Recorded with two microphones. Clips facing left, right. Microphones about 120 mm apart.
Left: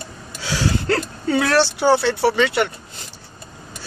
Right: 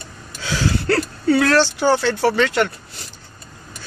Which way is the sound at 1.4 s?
10° left (ahead or behind).